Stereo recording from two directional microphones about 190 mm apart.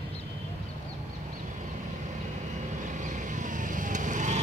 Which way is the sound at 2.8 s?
40° right (ahead or behind).